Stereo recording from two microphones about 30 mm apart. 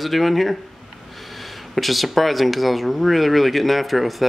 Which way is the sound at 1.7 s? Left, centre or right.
Centre.